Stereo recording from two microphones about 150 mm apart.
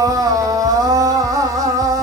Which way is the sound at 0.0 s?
25° right (ahead or behind).